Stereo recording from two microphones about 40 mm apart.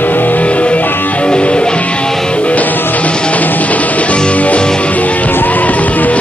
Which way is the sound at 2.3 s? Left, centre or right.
Left.